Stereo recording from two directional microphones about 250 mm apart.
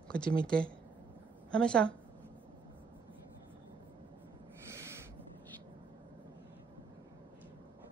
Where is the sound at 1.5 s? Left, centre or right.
Centre.